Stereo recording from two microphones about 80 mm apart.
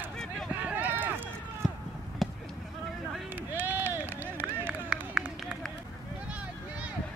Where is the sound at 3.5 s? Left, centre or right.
Right.